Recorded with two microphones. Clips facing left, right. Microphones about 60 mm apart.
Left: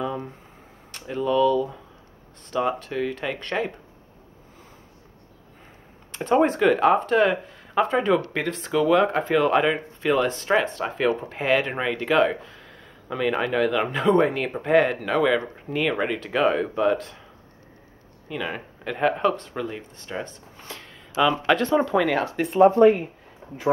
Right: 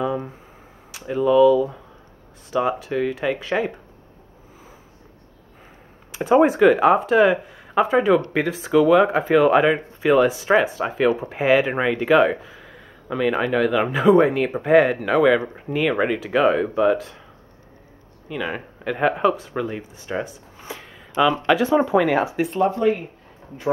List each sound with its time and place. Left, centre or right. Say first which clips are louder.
0.0 s a sound: right 4 dB; centre
0.9 s speech: right 6 dB; centre
6.1 s speech: right 4 dB; centre
18.3 s speech: right 3 dB; centre
22.8 s speech: left 4 dB; left
23.4 s a sound: left 1 dB; centre